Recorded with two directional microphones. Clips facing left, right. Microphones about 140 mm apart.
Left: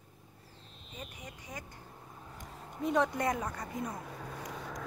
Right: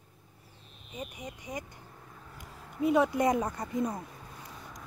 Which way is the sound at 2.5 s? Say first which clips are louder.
Left 1 dB; 25° left (ahead or behind).